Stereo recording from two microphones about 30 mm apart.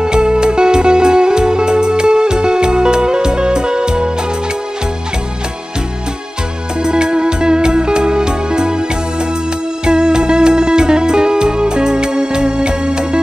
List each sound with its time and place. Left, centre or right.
0.0 s music: right
6.8 s music: right